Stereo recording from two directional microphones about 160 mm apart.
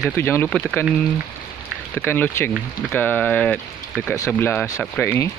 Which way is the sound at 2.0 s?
10° left (ahead or behind).